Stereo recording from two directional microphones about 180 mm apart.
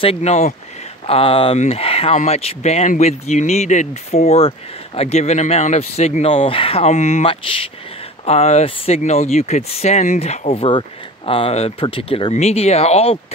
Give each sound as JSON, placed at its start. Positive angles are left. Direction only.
{"t": 0.0, "sound": "speech", "side_deg": 35}